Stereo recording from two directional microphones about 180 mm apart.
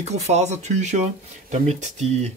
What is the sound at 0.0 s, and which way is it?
Speech, 40° right (ahead or behind).